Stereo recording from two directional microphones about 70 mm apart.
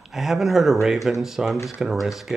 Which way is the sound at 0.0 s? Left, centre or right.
Centre.